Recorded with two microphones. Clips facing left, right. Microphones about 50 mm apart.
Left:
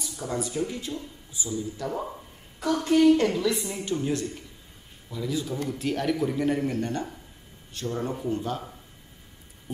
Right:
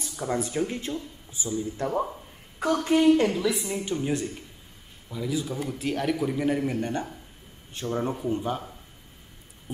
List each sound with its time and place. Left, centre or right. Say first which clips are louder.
0.0 s a woman's voice: right 2 dB; right
3.2 s a woman's voice: even; centre